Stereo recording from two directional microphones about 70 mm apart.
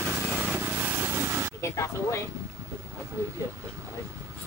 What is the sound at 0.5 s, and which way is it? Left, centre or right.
Vehicle, right.